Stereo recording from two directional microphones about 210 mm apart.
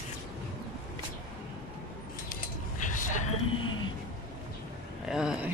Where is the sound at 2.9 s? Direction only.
40° left (ahead or behind).